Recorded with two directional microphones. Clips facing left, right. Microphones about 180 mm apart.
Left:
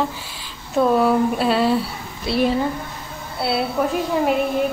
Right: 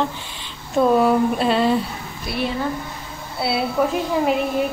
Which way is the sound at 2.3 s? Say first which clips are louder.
Left 6 dB; 30° left (ahead or behind).